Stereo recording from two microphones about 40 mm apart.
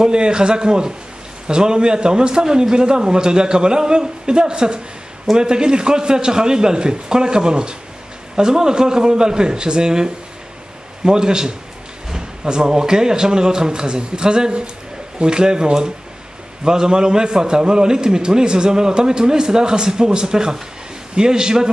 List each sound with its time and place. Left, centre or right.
0.0 s a man's voice: right